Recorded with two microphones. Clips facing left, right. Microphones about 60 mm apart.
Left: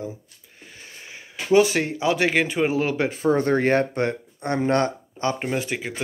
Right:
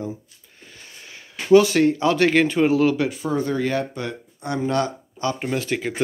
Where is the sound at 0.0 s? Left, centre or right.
Centre.